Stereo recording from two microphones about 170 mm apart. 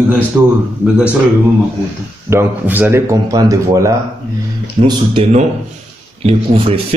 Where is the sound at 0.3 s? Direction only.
15° right (ahead or behind).